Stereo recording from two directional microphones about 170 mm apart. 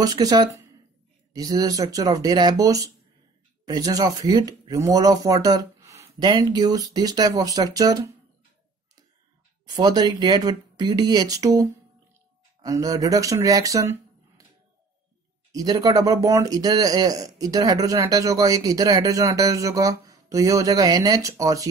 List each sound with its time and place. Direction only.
0.0 s speech: 20° right (ahead or behind)
9.8 s speech: 25° right (ahead or behind)
15.5 s speech: 20° right (ahead or behind)